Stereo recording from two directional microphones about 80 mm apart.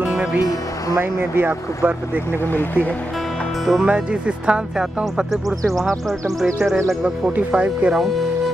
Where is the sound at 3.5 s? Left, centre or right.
Centre.